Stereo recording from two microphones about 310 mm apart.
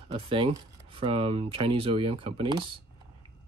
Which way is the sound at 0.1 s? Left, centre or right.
Centre.